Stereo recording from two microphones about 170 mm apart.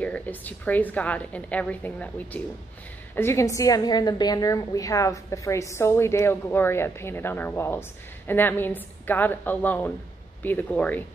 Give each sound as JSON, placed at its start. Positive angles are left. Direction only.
{"t": 0.0, "sound": "a woman's voice", "side_deg": 10}